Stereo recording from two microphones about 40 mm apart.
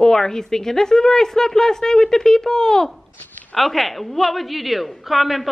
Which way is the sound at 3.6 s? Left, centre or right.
Centre.